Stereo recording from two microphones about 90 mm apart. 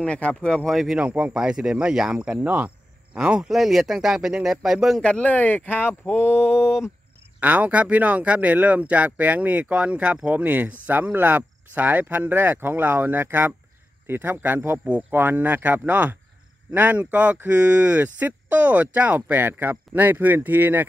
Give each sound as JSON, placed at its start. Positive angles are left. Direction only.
{"t": 0.0, "sound": "speech", "side_deg": 10}
{"t": 0.7, "sound": "speech", "side_deg": -5}
{"t": 5.0, "sound": "speech", "side_deg": 15}
{"t": 6.5, "sound": "a sound", "side_deg": -5}
{"t": 7.3, "sound": "speech", "side_deg": -15}